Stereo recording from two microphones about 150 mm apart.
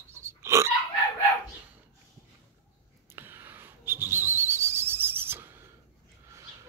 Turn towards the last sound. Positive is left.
turn(degrees=-15)  # may be behind; listen again after turning